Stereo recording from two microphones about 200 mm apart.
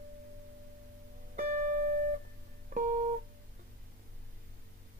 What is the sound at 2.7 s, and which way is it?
Music, 40° right (ahead or behind).